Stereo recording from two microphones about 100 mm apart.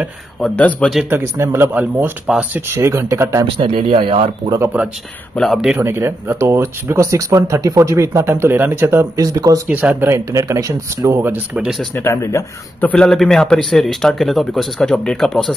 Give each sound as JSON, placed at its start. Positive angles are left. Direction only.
{"t": 0.4, "sound": "a man's voice", "side_deg": 10}
{"t": 1.1, "sound": "speech", "side_deg": -30}
{"t": 2.7, "sound": "speech", "side_deg": -25}
{"t": 3.5, "sound": "speech", "side_deg": -60}
{"t": 5.3, "sound": "a man's voice", "side_deg": 0}
{"t": 5.8, "sound": "speech", "side_deg": -25}
{"t": 9.7, "sound": "speech", "side_deg": -15}
{"t": 11.2, "sound": "speech", "side_deg": -10}
{"t": 11.9, "sound": "speech", "side_deg": 25}
{"t": 12.8, "sound": "a man's voice", "side_deg": 10}